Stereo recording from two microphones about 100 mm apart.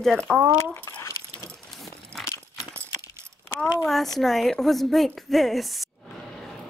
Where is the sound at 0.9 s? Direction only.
30° left (ahead or behind).